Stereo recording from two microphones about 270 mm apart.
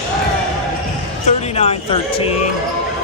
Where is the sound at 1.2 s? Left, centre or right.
Left.